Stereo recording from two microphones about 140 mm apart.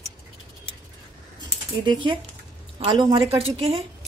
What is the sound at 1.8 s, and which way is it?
Speech, 35° right (ahead or behind).